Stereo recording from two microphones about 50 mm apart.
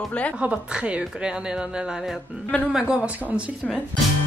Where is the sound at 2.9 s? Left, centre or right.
Right.